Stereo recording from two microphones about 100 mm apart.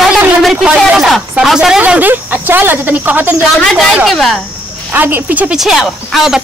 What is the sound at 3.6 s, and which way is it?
Speech, centre (ahead or behind).